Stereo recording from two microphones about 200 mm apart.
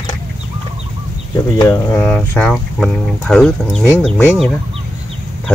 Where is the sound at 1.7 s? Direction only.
5° left (ahead or behind).